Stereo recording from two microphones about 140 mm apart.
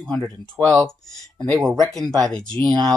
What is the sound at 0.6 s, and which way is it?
Speech, 25° right (ahead or behind).